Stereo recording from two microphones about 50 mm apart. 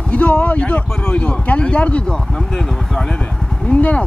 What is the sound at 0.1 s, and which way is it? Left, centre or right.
Speech, left.